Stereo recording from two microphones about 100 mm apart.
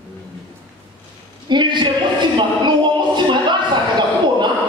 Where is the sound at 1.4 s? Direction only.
50° right (ahead or behind).